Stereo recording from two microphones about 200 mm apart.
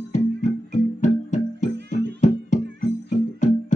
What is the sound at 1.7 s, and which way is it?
Music, 55° right (ahead or behind).